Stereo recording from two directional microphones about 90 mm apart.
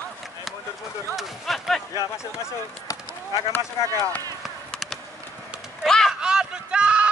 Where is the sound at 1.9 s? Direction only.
35° left (ahead or behind).